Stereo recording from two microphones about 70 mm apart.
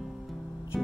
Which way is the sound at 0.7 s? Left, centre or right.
Centre.